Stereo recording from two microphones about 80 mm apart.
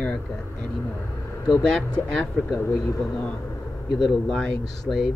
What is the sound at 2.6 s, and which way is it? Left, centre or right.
Speech, left.